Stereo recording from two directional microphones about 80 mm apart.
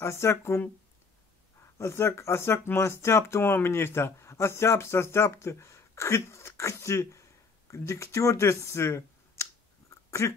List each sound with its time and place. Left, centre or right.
0.0 s speech: left
1.8 s speech: left
7.7 s a sound: left